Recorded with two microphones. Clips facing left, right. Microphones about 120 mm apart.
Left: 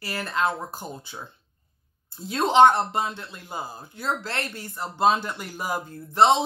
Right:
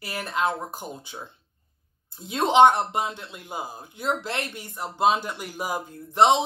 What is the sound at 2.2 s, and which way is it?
Speech, 15° right (ahead or behind).